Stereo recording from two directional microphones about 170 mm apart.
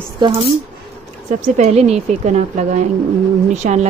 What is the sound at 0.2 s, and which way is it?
Speech, 30° right (ahead or behind).